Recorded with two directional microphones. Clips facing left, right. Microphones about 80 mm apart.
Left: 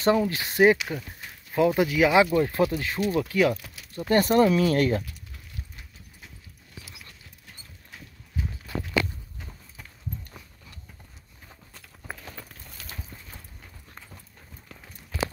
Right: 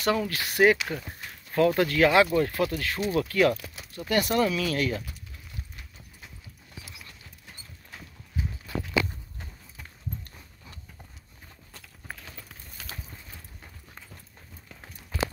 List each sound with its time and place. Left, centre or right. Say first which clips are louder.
0.0 s speech: left 4 dB; left
0.7 s speech: even; centre
3.9 s speech: left 5 dB; left